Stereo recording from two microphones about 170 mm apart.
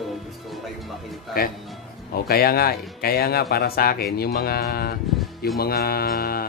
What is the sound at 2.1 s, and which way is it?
Speech, 65° left (ahead or behind).